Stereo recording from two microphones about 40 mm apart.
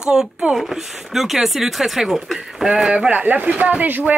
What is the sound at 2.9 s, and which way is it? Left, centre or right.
Speech, right.